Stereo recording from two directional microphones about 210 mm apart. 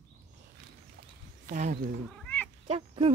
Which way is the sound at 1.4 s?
35° right (ahead or behind).